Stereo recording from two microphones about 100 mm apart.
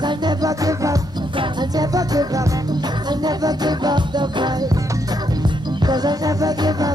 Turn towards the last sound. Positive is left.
turn(degrees=-40)  # may be behind; listen again after turning